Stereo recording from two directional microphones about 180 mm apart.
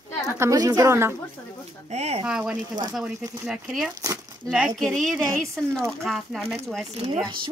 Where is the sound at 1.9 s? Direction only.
35° right (ahead or behind).